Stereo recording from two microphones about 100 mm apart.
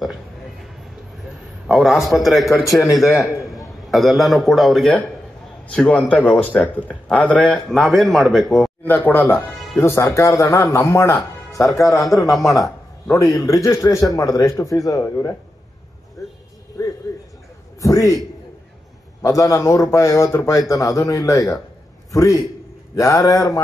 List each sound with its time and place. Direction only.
1.7 s speech: centre (ahead or behind)
3.1 s speech: 30° left (ahead or behind)
3.4 s a man's voice: centre (ahead or behind)
7.4 s speech: centre (ahead or behind)
8.8 s speech: 20° left (ahead or behind); by 15.0 s 35° left (ahead or behind)
16.8 s a sound: 35° left (ahead or behind)
17.7 s a man's voice: 35° left (ahead or behind)
19.2 s a man's voice: 35° left (ahead or behind)